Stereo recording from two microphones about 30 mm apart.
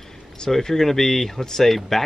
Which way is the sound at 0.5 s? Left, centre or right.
Centre.